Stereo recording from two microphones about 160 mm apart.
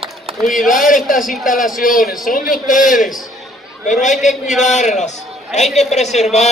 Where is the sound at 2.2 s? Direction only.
60° left (ahead or behind).